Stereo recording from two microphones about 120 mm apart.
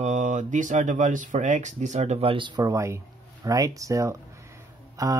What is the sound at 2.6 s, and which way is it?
Speech, 25° right (ahead or behind).